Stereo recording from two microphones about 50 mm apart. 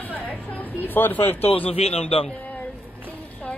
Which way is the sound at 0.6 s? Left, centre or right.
Left.